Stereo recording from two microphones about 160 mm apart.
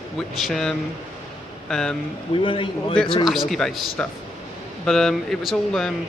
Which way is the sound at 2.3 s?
30° left (ahead or behind).